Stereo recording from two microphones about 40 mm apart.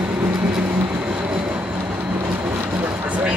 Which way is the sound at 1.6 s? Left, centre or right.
Right.